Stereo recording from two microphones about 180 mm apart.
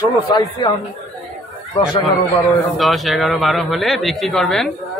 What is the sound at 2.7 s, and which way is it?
A man's voice, centre (ahead or behind).